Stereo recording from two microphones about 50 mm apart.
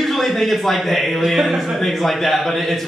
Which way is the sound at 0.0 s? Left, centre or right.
Centre.